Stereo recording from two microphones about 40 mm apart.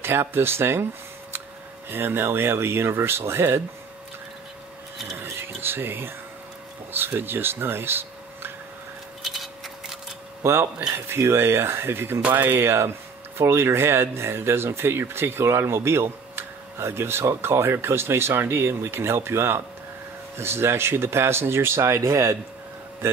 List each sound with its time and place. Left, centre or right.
0.0 s speech: right
1.9 s speech: right
5.1 s rub: right
6.9 s speech: right
9.2 s a sound: centre
10.4 s speech: right
12.3 s speech: right